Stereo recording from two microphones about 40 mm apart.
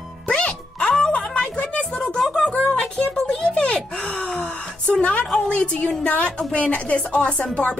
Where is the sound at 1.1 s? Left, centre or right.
Left.